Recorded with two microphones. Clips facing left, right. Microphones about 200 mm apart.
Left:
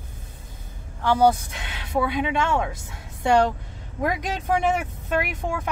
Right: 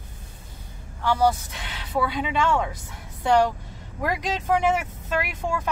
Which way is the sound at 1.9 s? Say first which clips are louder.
Left 2 dB; 15° left (ahead or behind).